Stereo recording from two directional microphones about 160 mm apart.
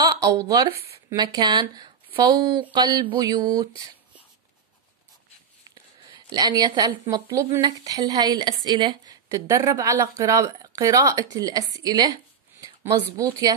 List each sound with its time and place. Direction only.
0.0 s a sound: 25° right (ahead or behind)
0.5 s a woman's voice: 25° right (ahead or behind)
6.0 s a woman's voice: 25° right (ahead or behind)